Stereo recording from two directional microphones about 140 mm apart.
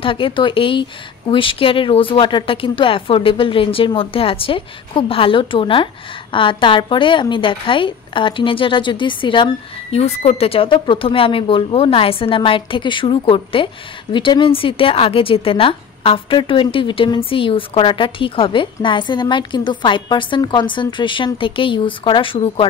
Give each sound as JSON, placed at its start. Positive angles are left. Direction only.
{"t": 0.0, "sound": "a woman's voice", "side_deg": 40}